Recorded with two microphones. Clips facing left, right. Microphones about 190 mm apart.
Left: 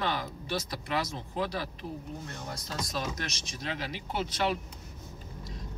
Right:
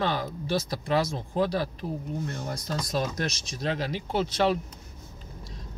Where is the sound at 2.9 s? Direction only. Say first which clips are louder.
Right 8 dB; 35° right (ahead or behind).